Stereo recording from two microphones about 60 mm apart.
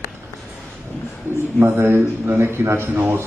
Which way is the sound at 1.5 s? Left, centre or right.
Right.